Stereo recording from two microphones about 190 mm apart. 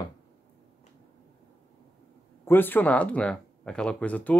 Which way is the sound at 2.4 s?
10° left (ahead or behind).